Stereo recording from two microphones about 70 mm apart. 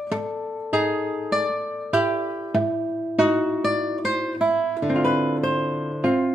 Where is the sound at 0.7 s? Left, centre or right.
Centre.